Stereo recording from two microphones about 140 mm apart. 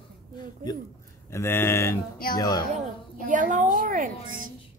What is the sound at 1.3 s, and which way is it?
Speech, 15° left (ahead or behind).